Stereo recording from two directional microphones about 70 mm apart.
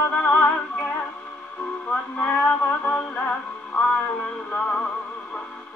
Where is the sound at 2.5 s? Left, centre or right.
Left.